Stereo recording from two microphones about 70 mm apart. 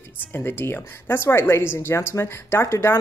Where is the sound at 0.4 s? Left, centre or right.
Left.